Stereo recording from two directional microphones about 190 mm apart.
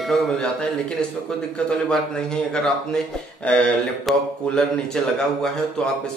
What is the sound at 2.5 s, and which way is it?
Speech, 5° left (ahead or behind).